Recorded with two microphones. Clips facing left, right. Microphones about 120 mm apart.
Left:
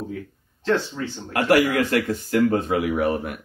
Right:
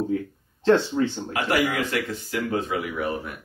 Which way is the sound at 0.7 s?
30° right (ahead or behind).